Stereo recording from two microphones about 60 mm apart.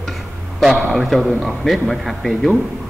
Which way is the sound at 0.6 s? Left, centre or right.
Centre.